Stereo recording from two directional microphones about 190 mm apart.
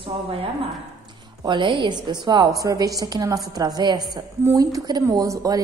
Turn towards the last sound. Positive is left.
turn(degrees=-20)  # may be behind; listen again after turning